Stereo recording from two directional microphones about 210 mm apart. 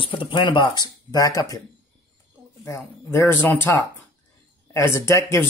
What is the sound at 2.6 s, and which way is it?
Speech, 10° left (ahead or behind).